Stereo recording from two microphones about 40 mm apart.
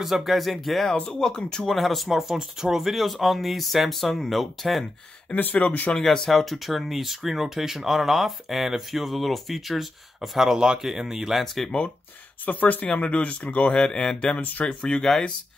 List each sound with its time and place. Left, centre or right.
0.0 s speech: centre
1.0 s speech: centre
1.7 s speech: centre
5.3 s speech: left
5.9 s speech: centre
11.4 s speech: centre
12.4 s speech: left
12.8 s speech: left
13.7 s speech: centre
15.0 s speech: centre